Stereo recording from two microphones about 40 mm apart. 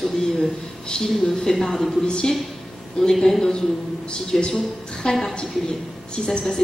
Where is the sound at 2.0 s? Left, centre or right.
Left.